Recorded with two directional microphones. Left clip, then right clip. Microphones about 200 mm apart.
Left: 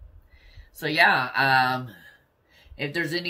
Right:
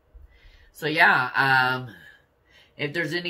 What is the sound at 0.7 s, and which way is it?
Speech, 15° right (ahead or behind).